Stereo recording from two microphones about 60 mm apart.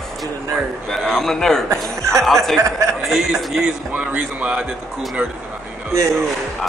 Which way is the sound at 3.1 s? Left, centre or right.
Centre.